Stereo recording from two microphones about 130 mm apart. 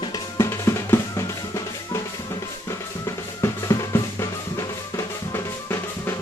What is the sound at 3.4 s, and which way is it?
Drum, 25° left (ahead or behind).